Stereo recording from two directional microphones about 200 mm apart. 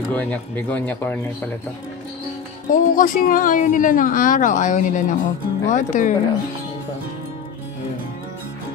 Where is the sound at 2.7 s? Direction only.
40° left (ahead or behind).